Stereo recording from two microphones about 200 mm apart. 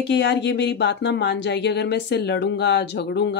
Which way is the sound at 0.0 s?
60° left (ahead or behind).